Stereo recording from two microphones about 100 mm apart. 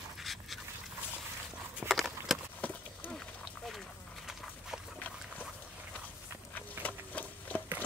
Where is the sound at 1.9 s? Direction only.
Centre (ahead or behind).